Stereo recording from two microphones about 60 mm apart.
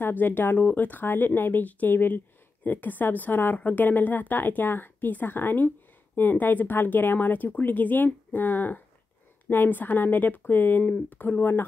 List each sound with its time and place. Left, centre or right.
0.0 s speech: left